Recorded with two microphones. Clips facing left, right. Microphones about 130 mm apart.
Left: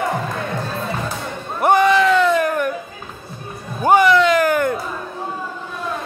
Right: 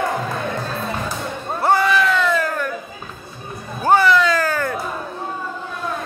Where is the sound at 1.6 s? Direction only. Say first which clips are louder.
Left 3 dB; 20° left (ahead or behind).